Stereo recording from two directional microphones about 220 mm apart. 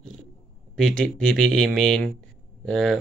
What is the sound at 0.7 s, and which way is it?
Speech, 5° left (ahead or behind).